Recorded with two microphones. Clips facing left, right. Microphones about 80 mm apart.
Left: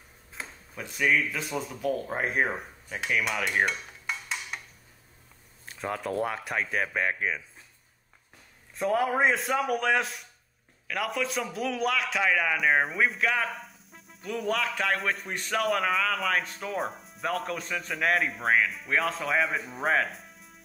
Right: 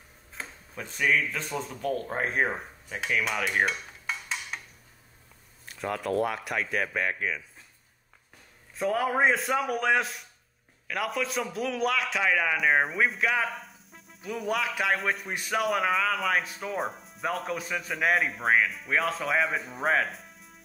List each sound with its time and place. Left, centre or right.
0.3 s speech: centre
5.8 s speech: left
8.7 s a man's voice: centre